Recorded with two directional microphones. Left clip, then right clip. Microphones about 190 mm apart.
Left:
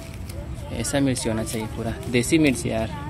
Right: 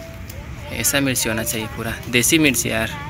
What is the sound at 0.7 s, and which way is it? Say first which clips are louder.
Speech: right 4 dB; 15° left (ahead or behind).